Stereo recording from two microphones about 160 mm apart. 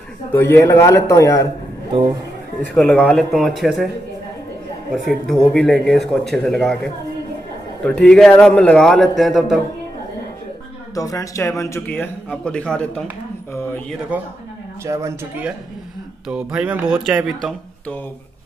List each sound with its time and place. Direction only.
0.3 s speech: 15° left (ahead or behind)
2.7 s speech: 5° left (ahead or behind)
4.9 s speech: centre (ahead or behind)
11.0 s speech: 20° left (ahead or behind); by 13.0 s 5° left (ahead or behind)
14.1 s speech: 10° right (ahead or behind)
16.3 s speech: 5° right (ahead or behind)